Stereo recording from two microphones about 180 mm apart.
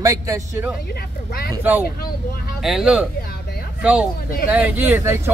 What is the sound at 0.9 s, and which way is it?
Speech, 60° left (ahead or behind).